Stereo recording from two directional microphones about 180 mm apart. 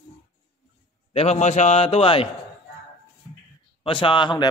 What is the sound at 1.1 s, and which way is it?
Speech, 35° left (ahead or behind).